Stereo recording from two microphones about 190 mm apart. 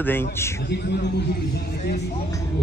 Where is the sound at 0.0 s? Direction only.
10° left (ahead or behind).